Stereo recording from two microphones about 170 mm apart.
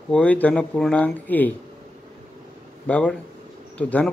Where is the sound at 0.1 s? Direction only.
10° left (ahead or behind).